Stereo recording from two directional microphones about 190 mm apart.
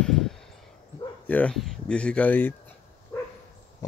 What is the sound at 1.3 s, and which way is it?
Speech, 5° left (ahead or behind).